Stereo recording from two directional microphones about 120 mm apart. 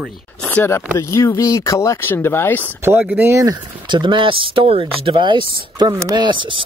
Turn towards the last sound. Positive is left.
turn(degrees=-45)  # may be behind; listen again after turning